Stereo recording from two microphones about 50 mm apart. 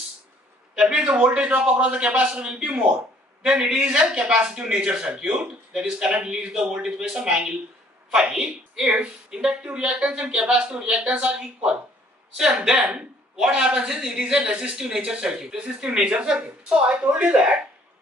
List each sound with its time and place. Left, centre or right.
0.7 s a woman's voice: centre